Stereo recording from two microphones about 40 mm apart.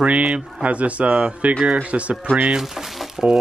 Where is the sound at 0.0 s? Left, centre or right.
Right.